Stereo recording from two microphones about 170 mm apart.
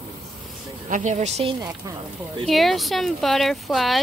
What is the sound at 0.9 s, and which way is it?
Speech, 45° right (ahead or behind).